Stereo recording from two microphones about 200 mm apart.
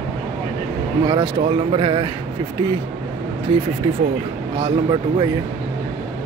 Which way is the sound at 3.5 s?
25° right (ahead or behind).